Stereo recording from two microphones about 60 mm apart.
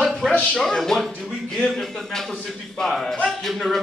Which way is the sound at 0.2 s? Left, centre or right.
Centre.